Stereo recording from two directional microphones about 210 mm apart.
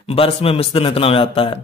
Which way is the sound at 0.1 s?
25° left (ahead or behind).